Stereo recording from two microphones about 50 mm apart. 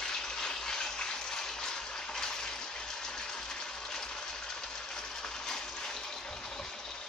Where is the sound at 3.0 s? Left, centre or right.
Centre.